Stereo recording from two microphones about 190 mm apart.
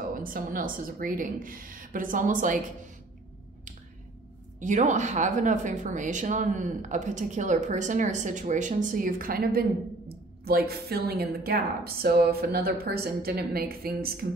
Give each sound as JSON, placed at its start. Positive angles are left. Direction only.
{"t": 0.1, "sound": "a woman's voice", "side_deg": -50}
{"t": 4.6, "sound": "a woman's voice", "side_deg": -40}